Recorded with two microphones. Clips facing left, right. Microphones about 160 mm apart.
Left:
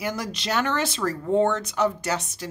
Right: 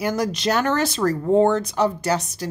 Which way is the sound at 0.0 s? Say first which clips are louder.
Right 7 dB; 40° right (ahead or behind).